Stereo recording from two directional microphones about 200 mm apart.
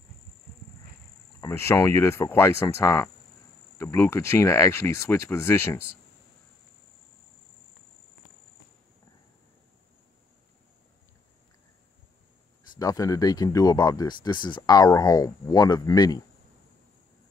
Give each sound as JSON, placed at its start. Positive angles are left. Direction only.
{"t": 1.4, "sound": "speech", "side_deg": 15}
{"t": 12.7, "sound": "speech", "side_deg": 15}